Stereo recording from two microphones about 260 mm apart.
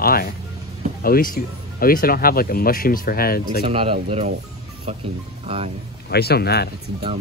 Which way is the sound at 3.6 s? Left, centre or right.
Right.